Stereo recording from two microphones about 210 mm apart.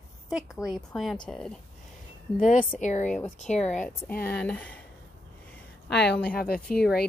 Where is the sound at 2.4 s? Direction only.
40° left (ahead or behind).